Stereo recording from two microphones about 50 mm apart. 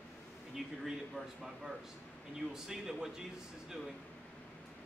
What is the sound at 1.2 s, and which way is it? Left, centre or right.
Speech, centre.